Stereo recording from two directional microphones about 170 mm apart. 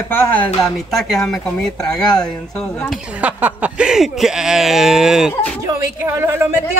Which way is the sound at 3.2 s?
10° right (ahead or behind).